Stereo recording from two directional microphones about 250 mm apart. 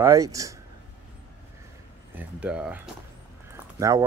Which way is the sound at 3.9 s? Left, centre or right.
Centre.